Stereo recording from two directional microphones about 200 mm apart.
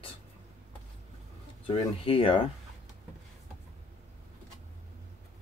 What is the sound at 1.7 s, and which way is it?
Speech, 25° left (ahead or behind).